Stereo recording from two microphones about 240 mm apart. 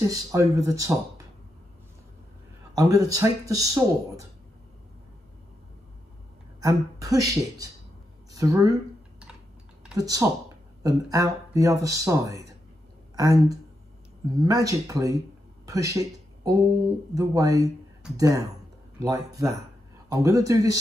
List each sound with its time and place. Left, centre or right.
0.1 s speech: centre
2.7 s speech: centre
6.6 s speech: centre
9.8 s speech: centre
15.6 s a sound: centre
17.1 s speech: centre